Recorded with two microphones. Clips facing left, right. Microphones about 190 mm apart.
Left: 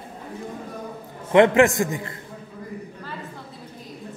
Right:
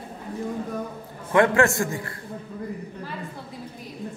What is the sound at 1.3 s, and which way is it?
Speech, 20° left (ahead or behind).